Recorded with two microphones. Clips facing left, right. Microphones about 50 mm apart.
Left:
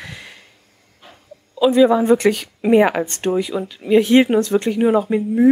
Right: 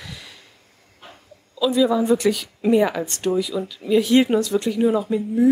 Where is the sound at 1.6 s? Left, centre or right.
Left.